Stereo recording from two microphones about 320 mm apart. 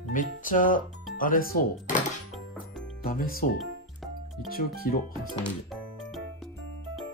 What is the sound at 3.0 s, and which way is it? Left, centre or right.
Speech, left.